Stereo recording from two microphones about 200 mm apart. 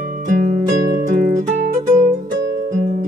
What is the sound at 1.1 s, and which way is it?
Music, 40° right (ahead or behind).